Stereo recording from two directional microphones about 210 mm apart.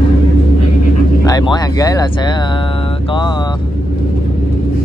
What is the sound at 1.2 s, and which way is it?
Speech, 20° left (ahead or behind).